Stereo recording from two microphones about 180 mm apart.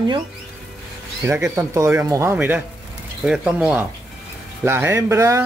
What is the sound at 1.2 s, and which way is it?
Speech, 10° right (ahead or behind).